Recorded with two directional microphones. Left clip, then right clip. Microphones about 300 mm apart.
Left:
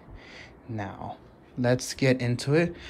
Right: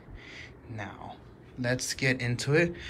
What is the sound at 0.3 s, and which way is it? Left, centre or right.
Speech, left.